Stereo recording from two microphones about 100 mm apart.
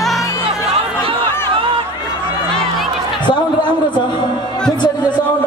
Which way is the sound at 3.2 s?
50° left (ahead or behind).